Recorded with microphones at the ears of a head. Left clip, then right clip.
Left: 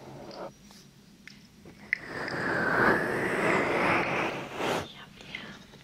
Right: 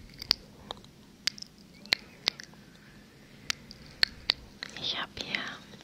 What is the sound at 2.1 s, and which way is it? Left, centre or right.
Vehicle, left.